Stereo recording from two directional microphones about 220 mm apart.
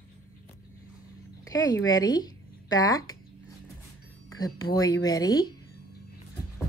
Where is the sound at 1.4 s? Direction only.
15° left (ahead or behind).